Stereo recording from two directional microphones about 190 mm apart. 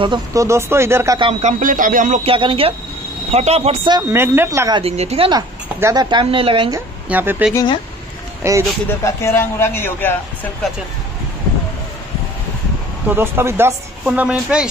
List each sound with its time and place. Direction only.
0.0 s speech: 20° right (ahead or behind)
1.4 s speech: 45° right (ahead or behind)
2.3 s speech: 30° right (ahead or behind)
4.1 s speech: 10° right (ahead or behind); by 5.4 s 30° right (ahead or behind)
5.8 s speech: 20° right (ahead or behind)
7.1 s speech: 10° right (ahead or behind)
7.5 s speech: 25° left (ahead or behind)
8.4 s speech: 15° right (ahead or behind)
9.0 s a man's voice: 15° left (ahead or behind)
13.1 s speech: 10° right (ahead or behind)